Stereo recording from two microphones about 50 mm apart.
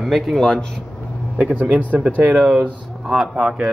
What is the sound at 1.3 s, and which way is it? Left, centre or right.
Speech, right.